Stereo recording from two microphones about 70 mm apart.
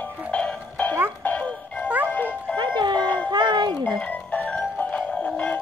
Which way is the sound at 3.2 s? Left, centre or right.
Right.